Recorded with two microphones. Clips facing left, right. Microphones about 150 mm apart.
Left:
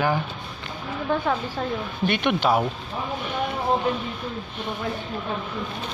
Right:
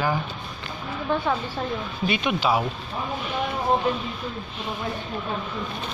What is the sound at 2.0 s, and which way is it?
Speech, 60° left (ahead or behind).